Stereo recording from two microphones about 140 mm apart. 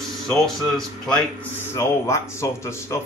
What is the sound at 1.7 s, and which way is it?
Speech, 20° left (ahead or behind).